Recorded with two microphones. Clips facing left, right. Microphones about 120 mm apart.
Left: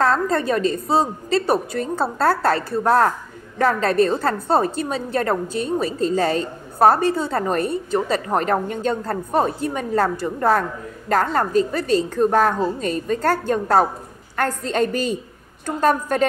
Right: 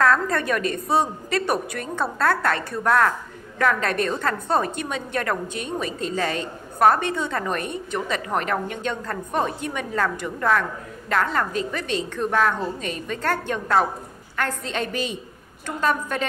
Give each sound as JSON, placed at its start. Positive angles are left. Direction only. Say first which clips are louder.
{"t": 0.0, "sound": "a woman's voice", "louder": "left 2 dB", "side_deg": 30}